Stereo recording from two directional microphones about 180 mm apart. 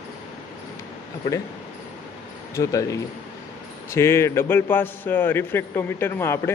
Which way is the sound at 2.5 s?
15° left (ahead or behind).